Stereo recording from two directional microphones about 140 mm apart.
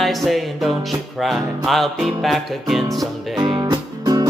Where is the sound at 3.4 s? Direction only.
30° right (ahead or behind).